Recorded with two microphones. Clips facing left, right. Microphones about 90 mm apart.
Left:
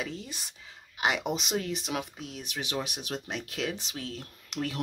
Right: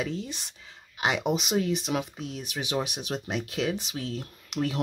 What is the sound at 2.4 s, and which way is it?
Speech, 15° right (ahead or behind).